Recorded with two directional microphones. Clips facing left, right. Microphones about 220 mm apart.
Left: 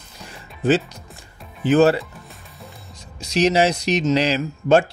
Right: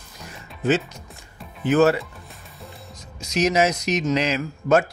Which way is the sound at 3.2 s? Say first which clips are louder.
Left 2 dB; 30° left (ahead or behind).